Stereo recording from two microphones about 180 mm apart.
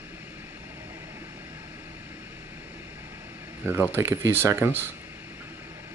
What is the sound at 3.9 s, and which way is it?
Speech, 15° right (ahead or behind).